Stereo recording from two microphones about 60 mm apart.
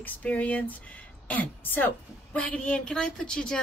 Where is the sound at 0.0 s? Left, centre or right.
Left.